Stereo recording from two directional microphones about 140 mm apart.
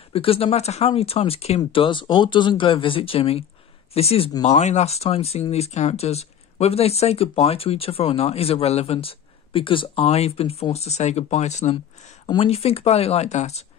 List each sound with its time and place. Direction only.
0.1 s speech: 40° left (ahead or behind)